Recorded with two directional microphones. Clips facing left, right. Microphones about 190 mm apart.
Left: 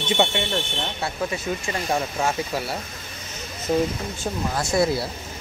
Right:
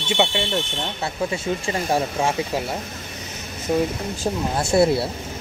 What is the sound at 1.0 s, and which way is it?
Speech, 25° right (ahead or behind).